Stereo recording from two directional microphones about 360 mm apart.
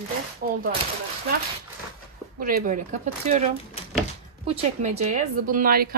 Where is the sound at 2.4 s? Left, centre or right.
Right.